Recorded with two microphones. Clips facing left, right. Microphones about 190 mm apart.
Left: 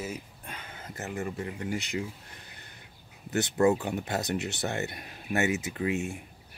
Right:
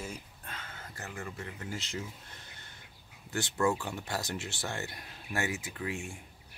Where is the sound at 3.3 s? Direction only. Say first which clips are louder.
Left 6 dB; 20° left (ahead or behind).